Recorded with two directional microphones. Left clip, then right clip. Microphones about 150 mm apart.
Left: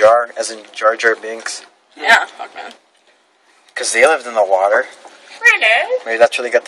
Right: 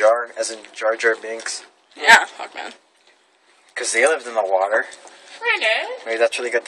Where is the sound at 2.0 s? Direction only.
50° right (ahead or behind).